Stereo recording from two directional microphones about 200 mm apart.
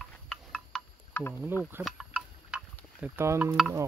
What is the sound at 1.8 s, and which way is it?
Insect, 5° right (ahead or behind).